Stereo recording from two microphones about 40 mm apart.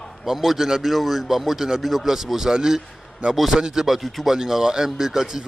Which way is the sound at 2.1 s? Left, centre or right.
Centre.